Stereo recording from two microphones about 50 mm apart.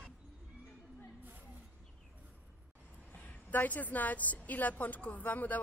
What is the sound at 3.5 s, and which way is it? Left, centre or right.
A woman's voice, left.